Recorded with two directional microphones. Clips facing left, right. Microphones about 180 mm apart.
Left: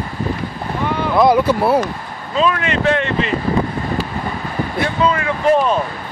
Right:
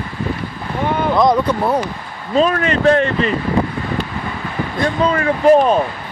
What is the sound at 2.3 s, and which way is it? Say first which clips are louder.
Speech: right 3 dB; 40° right (ahead or behind).